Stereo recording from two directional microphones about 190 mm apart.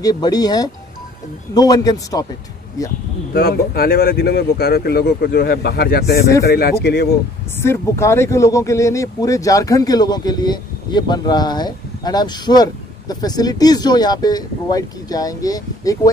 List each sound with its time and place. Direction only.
0.0 s speech: 20° left (ahead or behind)
3.3 s speech: 55° left (ahead or behind)
7.6 s speech: 15° left (ahead or behind)